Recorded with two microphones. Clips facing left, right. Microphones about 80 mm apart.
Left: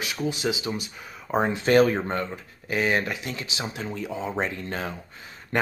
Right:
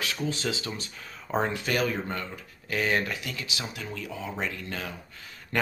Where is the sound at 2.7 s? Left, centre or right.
Left.